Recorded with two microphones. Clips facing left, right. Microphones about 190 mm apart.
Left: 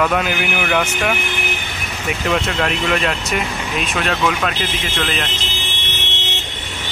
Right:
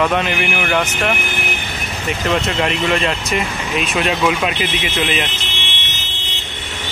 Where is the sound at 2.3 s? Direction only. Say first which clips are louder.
Right 1 dB; 5° right (ahead or behind).